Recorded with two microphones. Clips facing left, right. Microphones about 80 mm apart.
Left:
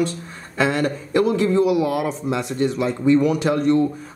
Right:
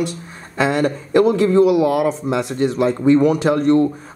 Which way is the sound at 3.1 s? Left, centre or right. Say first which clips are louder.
Right 3 dB; right.